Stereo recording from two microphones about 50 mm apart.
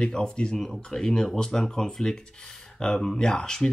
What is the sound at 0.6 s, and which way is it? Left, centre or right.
Speech, centre.